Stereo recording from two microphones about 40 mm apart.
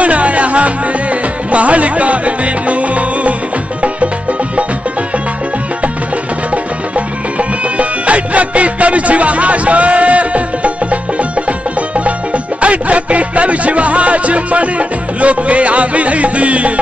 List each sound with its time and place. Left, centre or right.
0.0 s music: right
7.3 s music: right